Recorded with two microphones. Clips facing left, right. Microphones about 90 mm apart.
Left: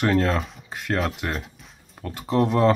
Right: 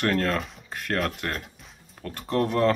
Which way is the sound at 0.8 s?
10° left (ahead or behind).